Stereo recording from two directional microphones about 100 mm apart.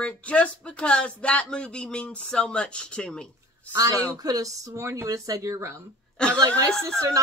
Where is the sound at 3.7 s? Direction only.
35° right (ahead or behind).